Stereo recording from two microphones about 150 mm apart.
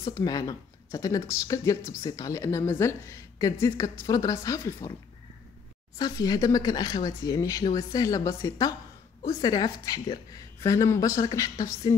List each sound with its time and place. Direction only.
0.0 s speech: 25° left (ahead or behind)
5.9 s speech: 25° left (ahead or behind)